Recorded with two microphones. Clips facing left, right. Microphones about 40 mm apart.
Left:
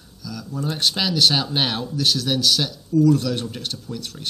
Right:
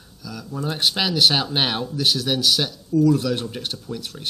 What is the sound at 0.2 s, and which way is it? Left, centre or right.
Speech, centre.